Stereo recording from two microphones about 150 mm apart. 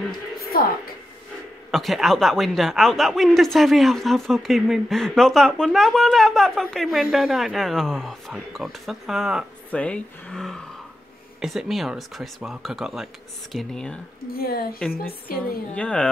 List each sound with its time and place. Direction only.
0.5 s a woman's voice: 80° left
1.7 s a woman's voice: centre (ahead or behind)
9.7 s a woman's voice: 5° left (ahead or behind)
14.3 s speech: 85° left
14.8 s a woman's voice: 10° left (ahead or behind)